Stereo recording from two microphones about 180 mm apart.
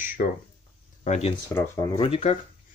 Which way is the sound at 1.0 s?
40° left (ahead or behind).